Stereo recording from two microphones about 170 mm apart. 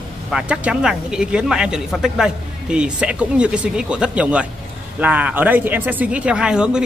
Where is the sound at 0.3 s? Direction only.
5° right (ahead or behind).